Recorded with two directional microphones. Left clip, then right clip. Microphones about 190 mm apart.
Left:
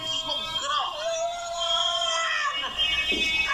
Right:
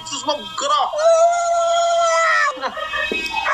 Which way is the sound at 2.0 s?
45° right (ahead or behind).